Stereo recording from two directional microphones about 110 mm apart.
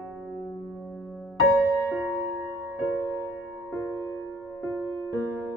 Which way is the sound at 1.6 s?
30° left (ahead or behind).